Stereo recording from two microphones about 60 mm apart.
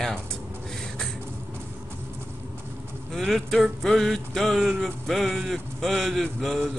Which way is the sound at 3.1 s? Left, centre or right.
Centre.